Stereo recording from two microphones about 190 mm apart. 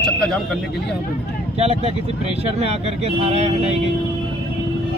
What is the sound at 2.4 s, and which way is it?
Speech, 35° right (ahead or behind).